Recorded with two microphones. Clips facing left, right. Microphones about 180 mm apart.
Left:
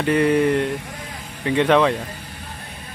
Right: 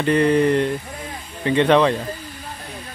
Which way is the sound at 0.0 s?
5° left (ahead or behind).